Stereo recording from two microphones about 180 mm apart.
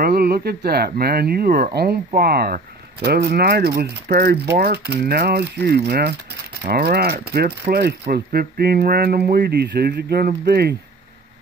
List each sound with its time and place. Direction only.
0.0 s speech: 60° right (ahead or behind)